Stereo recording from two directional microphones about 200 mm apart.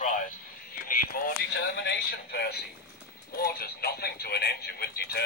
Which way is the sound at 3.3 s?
50° left (ahead or behind).